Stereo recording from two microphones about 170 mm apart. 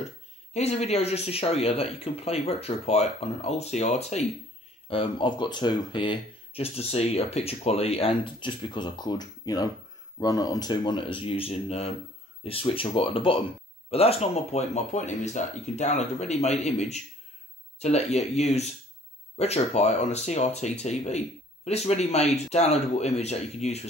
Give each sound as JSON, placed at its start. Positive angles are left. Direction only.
{"t": 0.5, "sound": "speech", "side_deg": 40}